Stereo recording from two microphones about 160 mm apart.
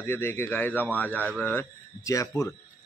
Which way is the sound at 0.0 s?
15° left (ahead or behind).